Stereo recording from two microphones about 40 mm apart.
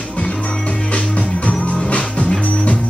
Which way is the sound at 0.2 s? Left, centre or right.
Left.